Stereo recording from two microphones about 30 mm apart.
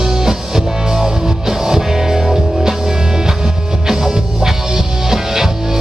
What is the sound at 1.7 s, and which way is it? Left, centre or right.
Music, centre.